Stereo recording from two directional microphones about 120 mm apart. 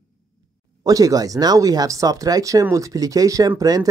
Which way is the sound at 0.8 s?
30° right (ahead or behind).